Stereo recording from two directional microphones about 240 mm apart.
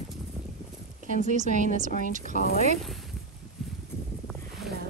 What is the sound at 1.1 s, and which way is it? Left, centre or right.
A woman's voice, right.